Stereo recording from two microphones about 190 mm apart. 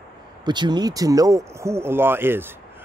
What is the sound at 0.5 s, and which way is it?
Speech, 20° right (ahead or behind).